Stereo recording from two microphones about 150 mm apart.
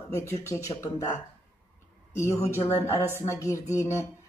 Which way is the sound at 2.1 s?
20° left (ahead or behind).